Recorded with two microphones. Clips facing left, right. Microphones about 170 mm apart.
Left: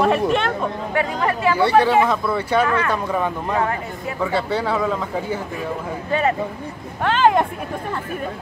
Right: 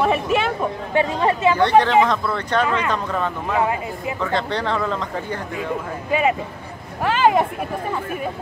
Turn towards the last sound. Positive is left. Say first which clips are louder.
# left 1 dB
turn(degrees=-5)  # may be behind; listen again after turning